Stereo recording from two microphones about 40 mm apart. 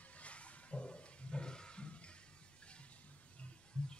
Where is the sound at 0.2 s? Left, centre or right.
Left.